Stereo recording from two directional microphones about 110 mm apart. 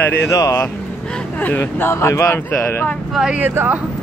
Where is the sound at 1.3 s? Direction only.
15° left (ahead or behind).